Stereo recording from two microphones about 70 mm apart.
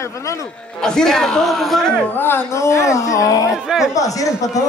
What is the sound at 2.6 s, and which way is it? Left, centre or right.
Speech, left.